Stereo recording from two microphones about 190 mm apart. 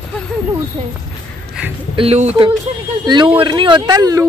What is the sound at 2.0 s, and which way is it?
Speech, 35° right (ahead or behind).